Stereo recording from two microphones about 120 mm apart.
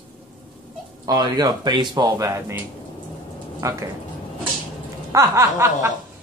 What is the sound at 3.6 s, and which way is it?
Speech, 25° right (ahead or behind).